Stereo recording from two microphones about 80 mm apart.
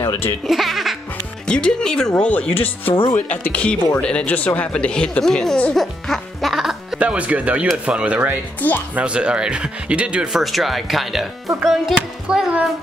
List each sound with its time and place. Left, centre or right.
0.0 s music: left
0.5 s speech: centre
1.4 s speech: centre
7.0 s speech: centre
8.5 s speech: left
8.9 s speech: centre
11.6 s music: centre
12.3 s speech: centre